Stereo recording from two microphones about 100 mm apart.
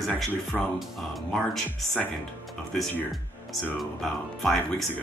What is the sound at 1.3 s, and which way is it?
Speech, 5° left (ahead or behind).